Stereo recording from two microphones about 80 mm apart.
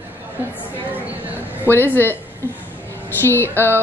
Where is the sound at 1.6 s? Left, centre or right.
Left.